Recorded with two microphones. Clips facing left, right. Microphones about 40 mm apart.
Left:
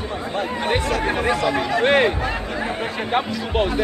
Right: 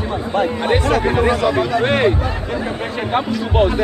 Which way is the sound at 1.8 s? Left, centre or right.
Centre.